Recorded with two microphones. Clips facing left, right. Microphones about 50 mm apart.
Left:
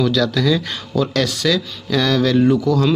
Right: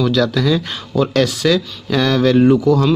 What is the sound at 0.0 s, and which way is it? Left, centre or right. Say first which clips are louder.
Speech: right 1 dB; centre.